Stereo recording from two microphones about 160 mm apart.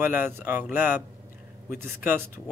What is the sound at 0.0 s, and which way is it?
Speech, 15° right (ahead or behind).